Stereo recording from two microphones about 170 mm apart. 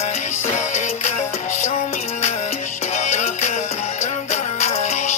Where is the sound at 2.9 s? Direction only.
45° left (ahead or behind).